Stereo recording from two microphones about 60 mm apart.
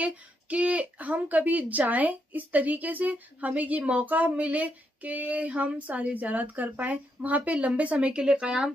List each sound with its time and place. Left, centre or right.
0.0 s speech: right